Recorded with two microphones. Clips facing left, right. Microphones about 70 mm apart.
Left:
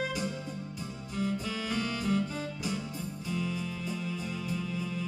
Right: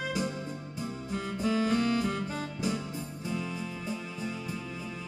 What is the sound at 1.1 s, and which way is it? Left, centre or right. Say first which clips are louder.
Music: right 3 dB; right.